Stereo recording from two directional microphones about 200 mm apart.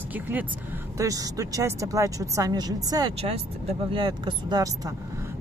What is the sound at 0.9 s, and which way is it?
A woman's voice, 15° right (ahead or behind).